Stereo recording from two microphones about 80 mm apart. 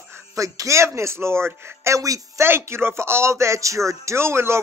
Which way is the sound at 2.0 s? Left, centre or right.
Right.